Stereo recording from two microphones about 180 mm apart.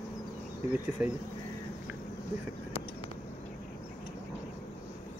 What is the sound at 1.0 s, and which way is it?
Speech, 5° right (ahead or behind).